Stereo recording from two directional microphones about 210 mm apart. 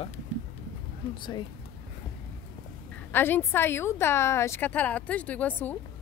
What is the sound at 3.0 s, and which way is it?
A woman's voice, 10° left (ahead or behind).